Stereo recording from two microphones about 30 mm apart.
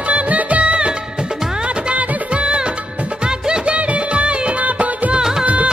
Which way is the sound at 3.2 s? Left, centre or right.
Right.